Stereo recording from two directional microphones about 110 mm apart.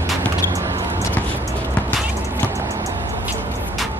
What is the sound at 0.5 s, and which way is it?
Music, 30° right (ahead or behind).